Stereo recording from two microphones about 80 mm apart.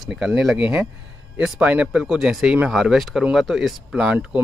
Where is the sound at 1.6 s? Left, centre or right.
Centre.